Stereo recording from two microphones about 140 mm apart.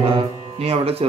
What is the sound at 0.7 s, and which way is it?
Music, 45° right (ahead or behind).